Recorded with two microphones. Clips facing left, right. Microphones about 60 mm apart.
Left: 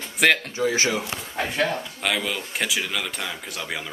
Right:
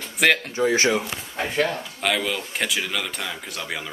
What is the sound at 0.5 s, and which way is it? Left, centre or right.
Speech, right.